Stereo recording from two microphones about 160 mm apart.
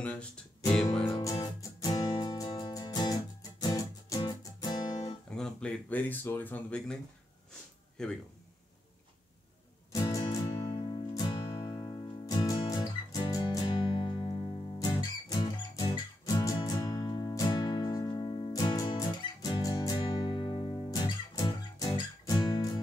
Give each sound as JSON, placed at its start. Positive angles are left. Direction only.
{"t": 0.0, "sound": "speech", "side_deg": 5}
{"t": 1.0, "sound": "music", "side_deg": 20}
{"t": 5.3, "sound": "speech", "side_deg": 5}
{"t": 8.0, "sound": "speech", "side_deg": 5}
{"t": 9.9, "sound": "music", "side_deg": 25}